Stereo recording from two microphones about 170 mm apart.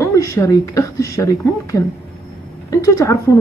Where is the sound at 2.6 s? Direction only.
20° left (ahead or behind).